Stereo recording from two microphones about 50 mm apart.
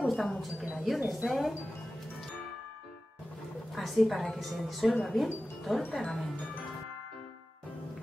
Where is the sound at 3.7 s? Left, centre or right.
Centre.